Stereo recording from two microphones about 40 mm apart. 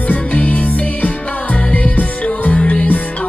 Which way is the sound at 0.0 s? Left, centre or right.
Left.